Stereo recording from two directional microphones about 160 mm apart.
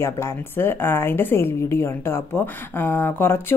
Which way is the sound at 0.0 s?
15° left (ahead or behind).